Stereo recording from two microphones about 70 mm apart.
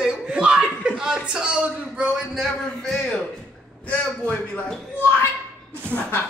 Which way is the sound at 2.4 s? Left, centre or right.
Centre.